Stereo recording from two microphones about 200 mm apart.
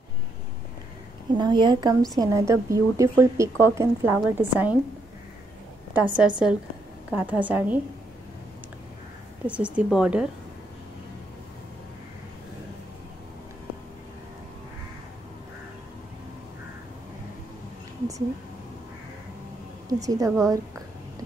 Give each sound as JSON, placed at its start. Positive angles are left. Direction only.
{"t": 1.3, "sound": "a woman's voice", "side_deg": -20}
{"t": 5.9, "sound": "a woman's voice", "side_deg": -5}
{"t": 9.5, "sound": "a woman's voice", "side_deg": -5}
{"t": 19.9, "sound": "a woman's voice", "side_deg": -15}